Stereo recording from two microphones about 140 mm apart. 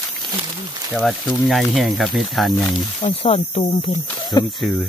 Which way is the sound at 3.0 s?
45° left (ahead or behind).